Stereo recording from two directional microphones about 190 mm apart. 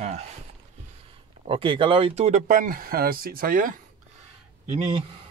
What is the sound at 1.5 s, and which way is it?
Speech, 25° right (ahead or behind).